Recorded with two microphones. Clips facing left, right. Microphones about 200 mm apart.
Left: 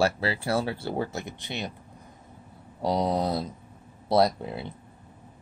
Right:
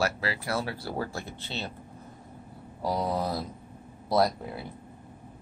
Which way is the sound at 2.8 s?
20° left (ahead or behind).